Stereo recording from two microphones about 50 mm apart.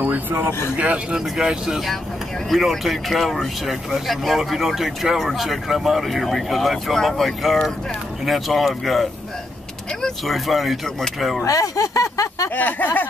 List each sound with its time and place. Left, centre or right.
0.0 s speech: right
0.5 s speech: left
0.7 s speech: right
1.1 s speech: centre
2.5 s speech: centre
10.0 s speech: centre
11.9 s a sound: left
12.5 s speech: left